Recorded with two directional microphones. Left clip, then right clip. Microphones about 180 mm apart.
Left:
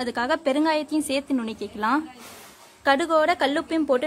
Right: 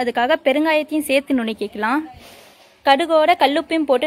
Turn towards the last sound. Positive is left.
turn(degrees=-15)  # may be behind; listen again after turning